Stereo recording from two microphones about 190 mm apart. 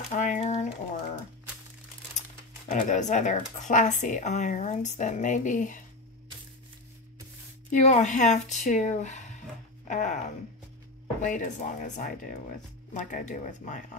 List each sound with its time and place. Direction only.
0.1 s a sound: 40° left (ahead or behind)
2.7 s speech: 40° left (ahead or behind)
7.7 s speech: 35° left (ahead or behind)
11.2 s speech: 40° left (ahead or behind)